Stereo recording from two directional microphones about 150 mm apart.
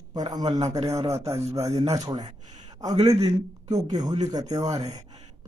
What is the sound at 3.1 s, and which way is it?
A man's voice, 20° right (ahead or behind).